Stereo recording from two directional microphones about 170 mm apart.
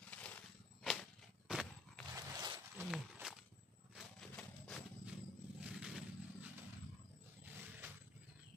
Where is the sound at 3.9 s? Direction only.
5° left (ahead or behind).